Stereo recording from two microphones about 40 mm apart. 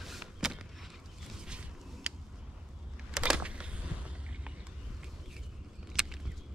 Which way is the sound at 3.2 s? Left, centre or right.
Right.